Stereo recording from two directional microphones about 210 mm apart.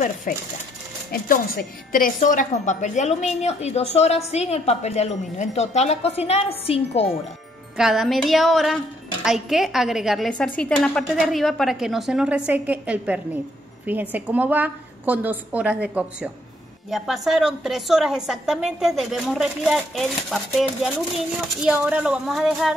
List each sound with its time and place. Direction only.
0.3 s speech: 40° left (ahead or behind)
7.7 s a woman's voice: centre (ahead or behind)